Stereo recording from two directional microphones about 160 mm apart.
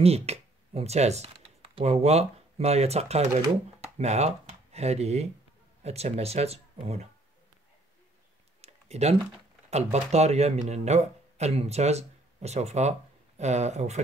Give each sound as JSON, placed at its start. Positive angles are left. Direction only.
{"t": 0.0, "sound": "speech", "side_deg": -40}
{"t": 8.5, "sound": "a sound", "side_deg": -40}
{"t": 9.7, "sound": "speech", "side_deg": -40}